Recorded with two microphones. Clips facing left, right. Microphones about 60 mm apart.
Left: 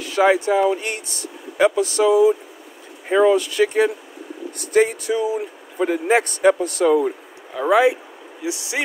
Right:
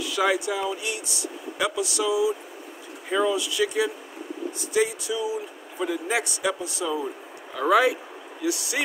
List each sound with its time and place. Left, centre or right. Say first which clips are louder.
0.0 s a man's voice: left 7 dB; left
7.5 s speech: left 4 dB; left